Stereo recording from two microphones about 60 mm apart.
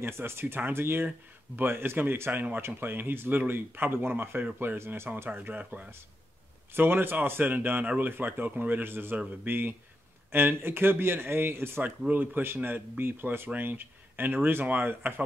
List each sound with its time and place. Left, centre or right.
0.0 s speech: right
6.7 s speech: right